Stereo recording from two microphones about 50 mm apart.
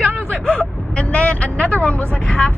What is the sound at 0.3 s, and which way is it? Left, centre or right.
Vehicle, left.